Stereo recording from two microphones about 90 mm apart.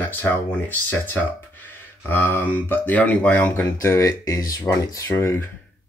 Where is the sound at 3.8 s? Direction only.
30° left (ahead or behind).